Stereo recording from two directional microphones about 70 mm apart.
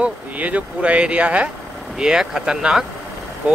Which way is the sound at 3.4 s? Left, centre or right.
Right.